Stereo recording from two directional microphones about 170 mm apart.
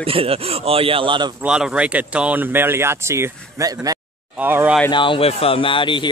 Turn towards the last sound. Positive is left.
turn(degrees=30)  # may be behind; listen again after turning